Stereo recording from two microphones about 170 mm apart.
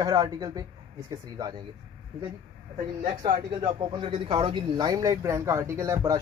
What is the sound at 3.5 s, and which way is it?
Speech, 30° right (ahead or behind).